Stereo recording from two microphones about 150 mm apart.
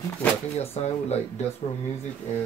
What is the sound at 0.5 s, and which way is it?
Speech, 45° left (ahead or behind).